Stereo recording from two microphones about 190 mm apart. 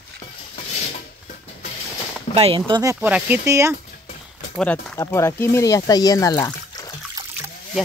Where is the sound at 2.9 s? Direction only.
5° right (ahead or behind).